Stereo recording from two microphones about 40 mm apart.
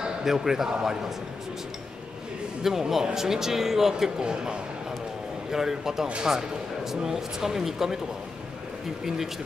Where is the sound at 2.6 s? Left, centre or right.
Centre.